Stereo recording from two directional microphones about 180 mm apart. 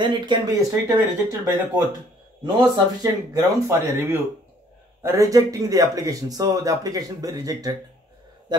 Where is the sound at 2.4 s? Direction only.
20° right (ahead or behind).